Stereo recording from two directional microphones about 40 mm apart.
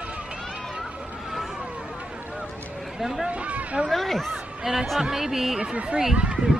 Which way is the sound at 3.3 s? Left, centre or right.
Right.